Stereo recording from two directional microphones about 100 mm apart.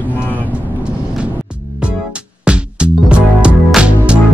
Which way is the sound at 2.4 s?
10° right (ahead or behind).